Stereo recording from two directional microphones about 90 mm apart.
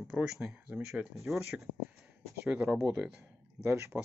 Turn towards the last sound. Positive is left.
turn(degrees=-30)  # may be behind; listen again after turning